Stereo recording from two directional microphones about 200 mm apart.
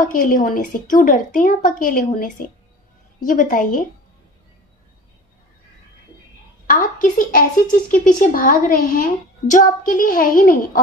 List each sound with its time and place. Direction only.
0.0 s a woman's voice: 40° left (ahead or behind)
6.7 s a woman's voice: 40° left (ahead or behind)